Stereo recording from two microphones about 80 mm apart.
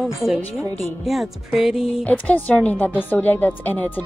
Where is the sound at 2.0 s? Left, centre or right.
Left.